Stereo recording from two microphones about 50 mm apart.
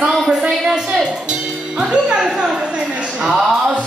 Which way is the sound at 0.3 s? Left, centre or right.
Centre.